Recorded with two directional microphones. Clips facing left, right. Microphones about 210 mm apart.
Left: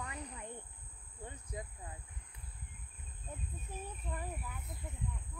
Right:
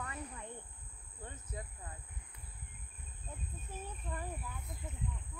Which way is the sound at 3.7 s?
15° left (ahead or behind).